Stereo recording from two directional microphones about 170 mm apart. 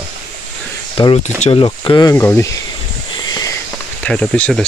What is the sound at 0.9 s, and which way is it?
Speech, 30° left (ahead or behind).